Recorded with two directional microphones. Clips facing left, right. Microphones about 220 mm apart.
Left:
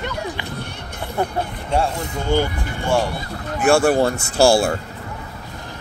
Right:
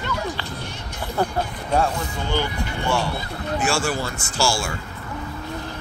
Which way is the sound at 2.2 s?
50° left (ahead or behind).